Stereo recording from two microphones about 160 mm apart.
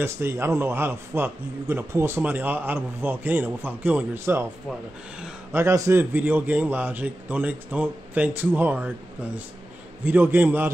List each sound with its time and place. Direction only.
0.0 s a man's voice: 15° right (ahead or behind)
5.5 s a man's voice: 15° right (ahead or behind)
10.0 s a man's voice: 10° right (ahead or behind)